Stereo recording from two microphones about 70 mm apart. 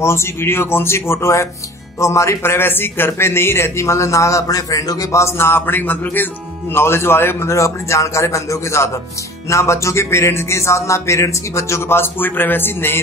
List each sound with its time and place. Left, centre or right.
0.0 s a man's voice: left
5.2 s a man's voice: left